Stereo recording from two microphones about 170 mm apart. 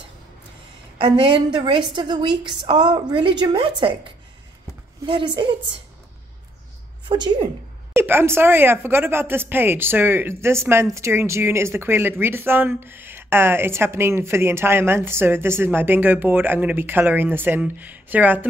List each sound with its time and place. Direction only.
0.9 s a woman's voice: 30° right (ahead or behind)
7.1 s a woman's voice: 25° right (ahead or behind)
7.9 s speech: 15° right (ahead or behind)